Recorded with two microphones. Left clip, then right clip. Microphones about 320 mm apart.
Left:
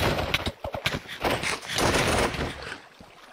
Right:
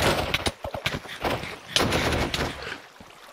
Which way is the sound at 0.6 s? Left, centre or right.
Centre.